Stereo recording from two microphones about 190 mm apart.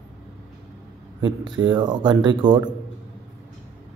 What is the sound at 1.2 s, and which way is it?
A man's voice, 25° right (ahead or behind).